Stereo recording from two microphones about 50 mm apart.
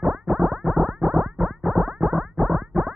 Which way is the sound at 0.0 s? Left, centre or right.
Centre.